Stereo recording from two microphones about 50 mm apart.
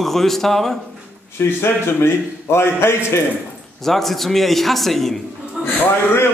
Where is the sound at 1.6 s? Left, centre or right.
Left.